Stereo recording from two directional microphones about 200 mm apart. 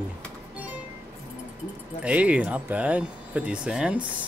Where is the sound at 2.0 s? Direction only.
5° right (ahead or behind).